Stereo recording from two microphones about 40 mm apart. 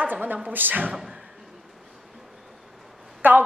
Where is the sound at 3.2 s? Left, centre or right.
Right.